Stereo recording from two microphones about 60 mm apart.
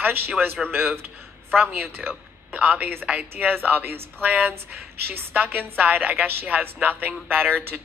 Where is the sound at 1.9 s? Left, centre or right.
Right.